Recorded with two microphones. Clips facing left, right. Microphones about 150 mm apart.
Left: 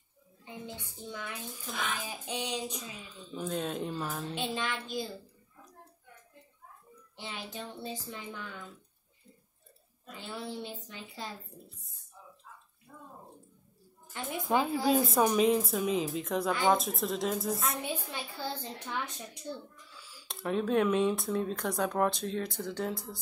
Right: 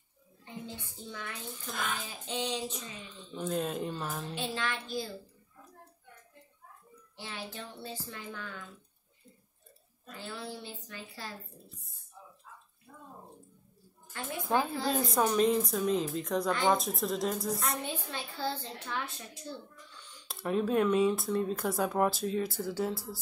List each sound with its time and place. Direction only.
0.7 s a woman's voice: 15° left (ahead or behind); by 4.4 s centre (ahead or behind)
4.4 s a woman's voice: 15° left (ahead or behind)
7.2 s a woman's voice: 20° left (ahead or behind)
10.1 s a woman's voice: 20° left (ahead or behind)
14.1 s a woman's voice: 15° left (ahead or behind)
17.9 s a woman's voice: 10° left (ahead or behind)
19.9 s a woman's voice: 5° left (ahead or behind)